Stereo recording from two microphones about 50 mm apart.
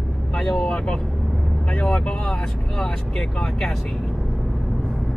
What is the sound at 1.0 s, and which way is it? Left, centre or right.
Vehicle, centre.